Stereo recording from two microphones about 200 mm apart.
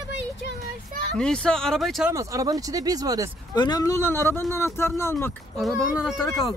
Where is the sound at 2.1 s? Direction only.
15° right (ahead or behind).